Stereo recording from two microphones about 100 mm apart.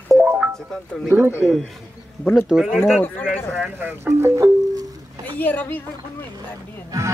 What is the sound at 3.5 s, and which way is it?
Speech, 15° right (ahead or behind).